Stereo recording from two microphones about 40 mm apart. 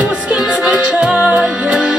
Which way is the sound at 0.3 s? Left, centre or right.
Right.